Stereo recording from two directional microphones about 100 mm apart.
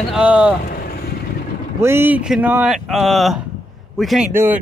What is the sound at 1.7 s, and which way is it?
Speech, 25° right (ahead or behind).